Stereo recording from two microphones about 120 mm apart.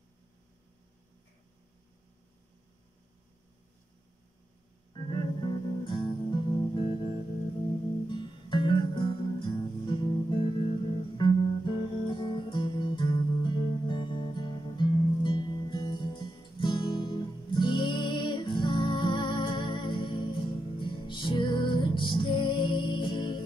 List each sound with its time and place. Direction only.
4.9 s music: 40° left (ahead or behind)